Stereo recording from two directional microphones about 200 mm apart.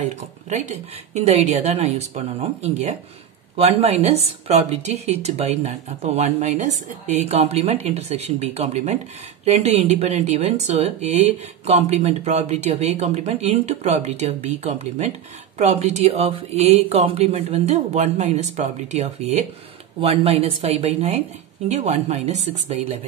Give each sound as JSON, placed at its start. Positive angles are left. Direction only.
{"t": 0.0, "sound": "speech", "side_deg": -35}